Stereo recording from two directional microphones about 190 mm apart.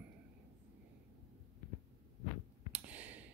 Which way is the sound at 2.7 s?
10° right (ahead or behind).